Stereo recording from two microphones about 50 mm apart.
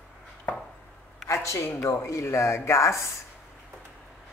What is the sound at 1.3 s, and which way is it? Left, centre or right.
Speech, left.